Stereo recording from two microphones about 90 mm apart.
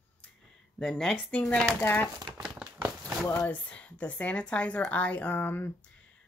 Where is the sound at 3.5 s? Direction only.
15° left (ahead or behind).